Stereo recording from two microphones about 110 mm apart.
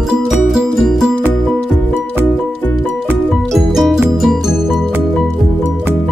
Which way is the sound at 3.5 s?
Centre (ahead or behind).